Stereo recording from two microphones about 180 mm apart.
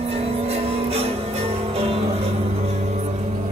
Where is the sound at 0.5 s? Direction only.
35° right (ahead or behind).